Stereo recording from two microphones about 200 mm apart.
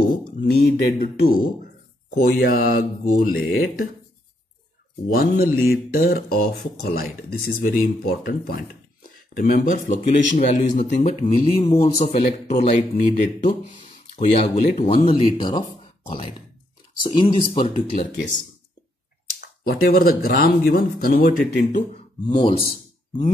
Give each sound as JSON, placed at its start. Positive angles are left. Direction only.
{"t": 0.4, "sound": "speech", "side_deg": 40}
{"t": 5.1, "sound": "speech", "side_deg": 50}
{"t": 19.4, "sound": "speech", "side_deg": 50}
{"t": 22.3, "sound": "a man's voice", "side_deg": 25}